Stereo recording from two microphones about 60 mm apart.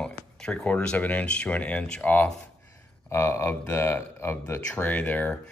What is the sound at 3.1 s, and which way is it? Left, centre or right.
Speech, left.